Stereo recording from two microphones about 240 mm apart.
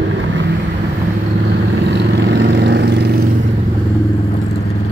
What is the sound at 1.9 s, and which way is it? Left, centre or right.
Vehicle, right.